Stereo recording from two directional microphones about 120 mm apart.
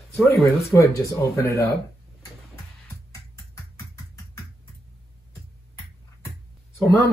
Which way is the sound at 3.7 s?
25° left (ahead or behind).